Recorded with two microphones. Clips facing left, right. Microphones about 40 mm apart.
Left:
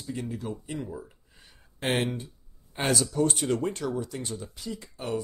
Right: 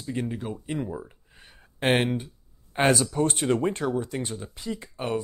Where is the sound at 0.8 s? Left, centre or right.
Right.